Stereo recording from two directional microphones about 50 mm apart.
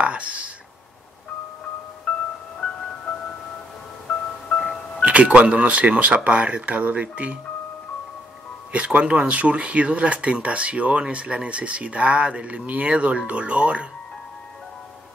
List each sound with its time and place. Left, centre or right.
0.0 s whispering: right
4.1 s music: centre
5.0 s speech: right
8.7 s speech: right